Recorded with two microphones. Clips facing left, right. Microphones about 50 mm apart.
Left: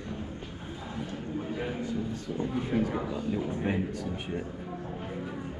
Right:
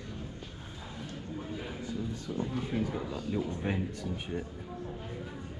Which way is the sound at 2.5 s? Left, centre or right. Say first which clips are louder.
Left 6 dB; centre.